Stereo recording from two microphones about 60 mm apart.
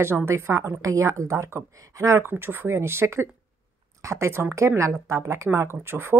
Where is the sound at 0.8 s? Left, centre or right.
Right.